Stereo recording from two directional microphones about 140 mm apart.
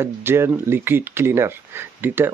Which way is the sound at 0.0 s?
15° right (ahead or behind).